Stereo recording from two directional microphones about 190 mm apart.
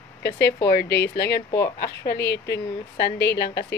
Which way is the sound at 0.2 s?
60° left (ahead or behind).